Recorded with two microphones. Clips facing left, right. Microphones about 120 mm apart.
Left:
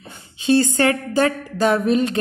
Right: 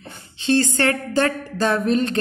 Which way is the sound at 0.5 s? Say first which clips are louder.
Left 2 dB; 15° left (ahead or behind).